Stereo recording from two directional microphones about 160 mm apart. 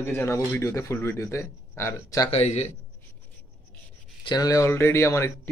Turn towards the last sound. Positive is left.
turn(degrees=15)  # may be behind; listen again after turning